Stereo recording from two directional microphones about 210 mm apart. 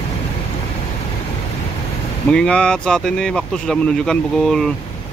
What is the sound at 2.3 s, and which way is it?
Speech, 5° left (ahead or behind).